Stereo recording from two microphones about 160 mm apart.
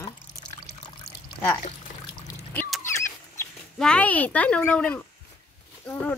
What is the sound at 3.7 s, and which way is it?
Speech, 5° left (ahead or behind).